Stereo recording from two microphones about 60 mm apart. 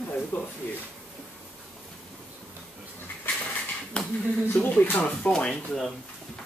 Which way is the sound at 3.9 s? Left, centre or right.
Centre.